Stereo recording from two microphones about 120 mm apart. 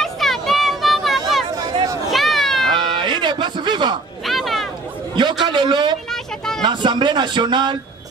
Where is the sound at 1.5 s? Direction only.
35° right (ahead or behind).